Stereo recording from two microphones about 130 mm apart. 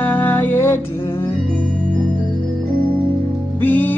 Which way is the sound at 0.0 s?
15° left (ahead or behind).